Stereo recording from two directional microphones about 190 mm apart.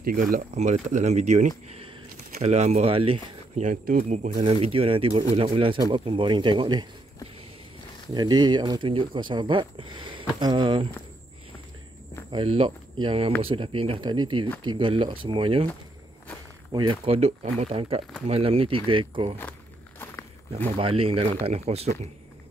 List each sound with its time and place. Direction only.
0.0 s speech: 50° right (ahead or behind); by 6.9 s 25° right (ahead or behind)
8.1 s speech: 20° right (ahead or behind)
12.3 s speech: 30° right (ahead or behind)
16.7 s speech: 25° right (ahead or behind)
20.7 s speech: 30° right (ahead or behind)